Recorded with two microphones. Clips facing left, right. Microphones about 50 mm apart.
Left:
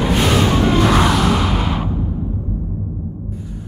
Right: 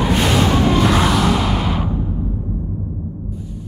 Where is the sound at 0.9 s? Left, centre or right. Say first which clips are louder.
Left 1 dB; centre.